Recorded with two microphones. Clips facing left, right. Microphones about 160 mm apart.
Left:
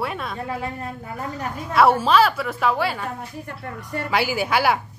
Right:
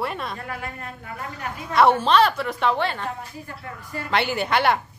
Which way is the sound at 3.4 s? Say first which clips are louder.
Left 3 dB; 65° left (ahead or behind).